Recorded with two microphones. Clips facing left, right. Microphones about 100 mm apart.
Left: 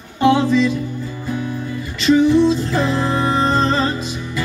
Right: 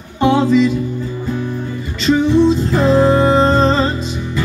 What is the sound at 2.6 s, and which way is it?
Music, 35° right (ahead or behind).